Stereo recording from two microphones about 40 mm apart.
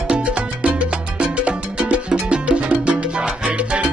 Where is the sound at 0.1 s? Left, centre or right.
Right.